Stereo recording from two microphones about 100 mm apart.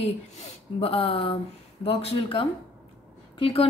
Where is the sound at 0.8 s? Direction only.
70° left (ahead or behind).